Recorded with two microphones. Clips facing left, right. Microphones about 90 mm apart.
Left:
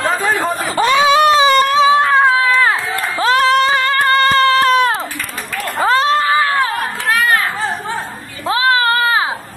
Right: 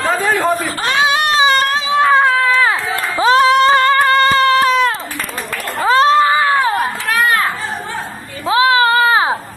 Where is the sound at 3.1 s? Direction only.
20° right (ahead or behind).